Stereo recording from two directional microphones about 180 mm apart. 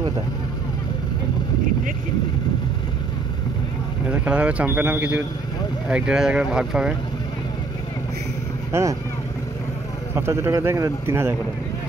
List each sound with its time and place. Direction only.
4.1 s a man's voice: 5° right (ahead or behind)
8.7 s a man's voice: 15° right (ahead or behind)
10.1 s a man's voice: 15° right (ahead or behind)